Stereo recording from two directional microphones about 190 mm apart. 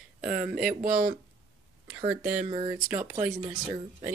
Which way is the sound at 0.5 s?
45° right (ahead or behind).